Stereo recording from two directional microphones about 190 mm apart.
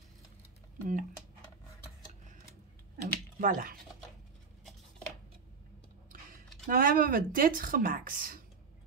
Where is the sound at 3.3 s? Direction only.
45° right (ahead or behind).